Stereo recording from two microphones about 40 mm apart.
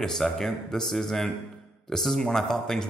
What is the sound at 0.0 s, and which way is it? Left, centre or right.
A man's voice, centre.